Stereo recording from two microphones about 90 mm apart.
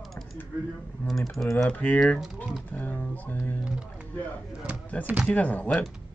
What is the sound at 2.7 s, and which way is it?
Speech, 20° left (ahead or behind).